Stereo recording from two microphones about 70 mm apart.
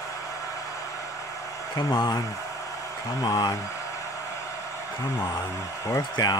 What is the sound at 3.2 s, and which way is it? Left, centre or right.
Speech, left.